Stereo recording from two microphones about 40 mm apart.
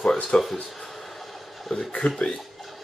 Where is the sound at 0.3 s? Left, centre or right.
Left.